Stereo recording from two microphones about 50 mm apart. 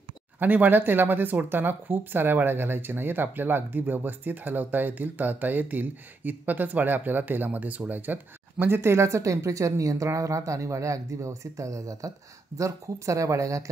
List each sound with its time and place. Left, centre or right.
0.4 s speech: right